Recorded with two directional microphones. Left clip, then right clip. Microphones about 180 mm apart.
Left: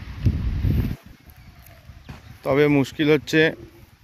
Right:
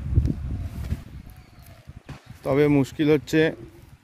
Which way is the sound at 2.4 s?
10° right (ahead or behind).